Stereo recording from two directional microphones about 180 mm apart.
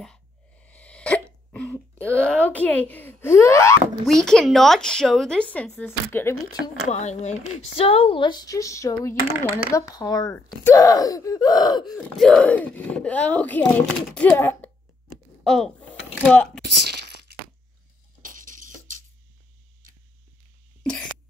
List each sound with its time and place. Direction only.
0.0 s hiccup: 5° left (ahead or behind)
4.0 s a woman's voice: 5° left (ahead or behind)
6.9 s speech: 40° left (ahead or behind); by 11.9 s 25° left (ahead or behind)
11.9 s speech: 5° left (ahead or behind)
15.4 s a sound: centre (ahead or behind)
16.3 s a woman's voice: 5° left (ahead or behind)
18.2 s a sound: 50° right (ahead or behind)